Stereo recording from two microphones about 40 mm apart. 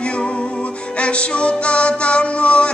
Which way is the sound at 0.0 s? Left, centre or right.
Left.